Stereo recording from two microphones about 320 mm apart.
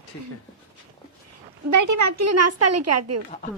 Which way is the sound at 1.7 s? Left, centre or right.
Right.